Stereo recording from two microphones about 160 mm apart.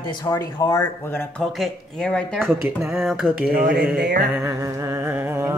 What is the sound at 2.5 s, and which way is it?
Speech, 15° right (ahead or behind).